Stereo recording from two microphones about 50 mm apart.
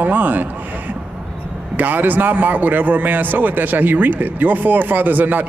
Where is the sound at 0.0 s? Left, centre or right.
Right.